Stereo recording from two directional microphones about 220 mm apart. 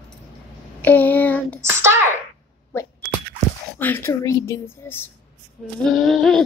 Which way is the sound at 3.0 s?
5° left (ahead or behind).